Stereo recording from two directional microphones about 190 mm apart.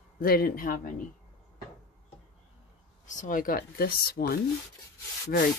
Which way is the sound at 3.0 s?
45° left (ahead or behind).